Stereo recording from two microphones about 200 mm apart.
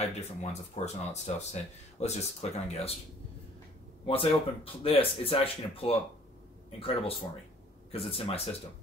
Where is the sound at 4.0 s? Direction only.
25° left (ahead or behind).